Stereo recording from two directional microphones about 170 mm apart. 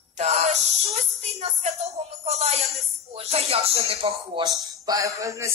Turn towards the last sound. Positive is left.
turn(degrees=-20)  # may be behind; listen again after turning